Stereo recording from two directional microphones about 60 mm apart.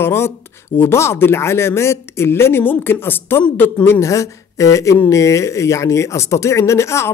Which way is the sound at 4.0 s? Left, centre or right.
Left.